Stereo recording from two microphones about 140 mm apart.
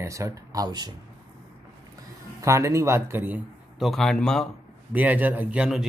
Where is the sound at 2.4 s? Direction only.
20° right (ahead or behind).